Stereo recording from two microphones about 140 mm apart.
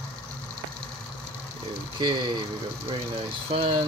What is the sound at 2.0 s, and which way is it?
Speech, 35° right (ahead or behind).